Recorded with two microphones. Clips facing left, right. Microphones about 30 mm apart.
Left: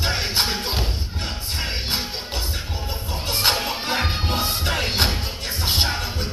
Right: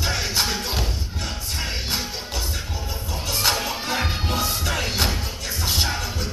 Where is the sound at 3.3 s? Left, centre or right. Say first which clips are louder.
Left 1 dB; left.